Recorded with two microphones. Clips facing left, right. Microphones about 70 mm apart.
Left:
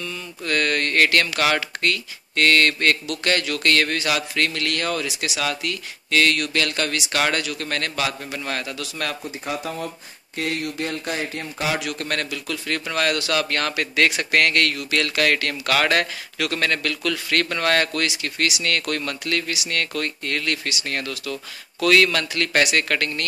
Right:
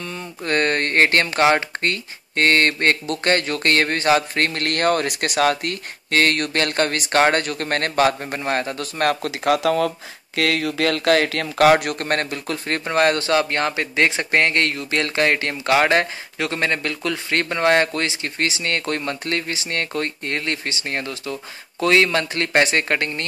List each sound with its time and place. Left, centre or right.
0.0 s speech: right
9.2 s speech: right
11.7 s a man's voice: right